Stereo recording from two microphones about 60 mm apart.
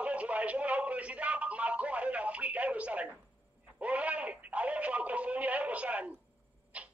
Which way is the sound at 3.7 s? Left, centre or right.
Right.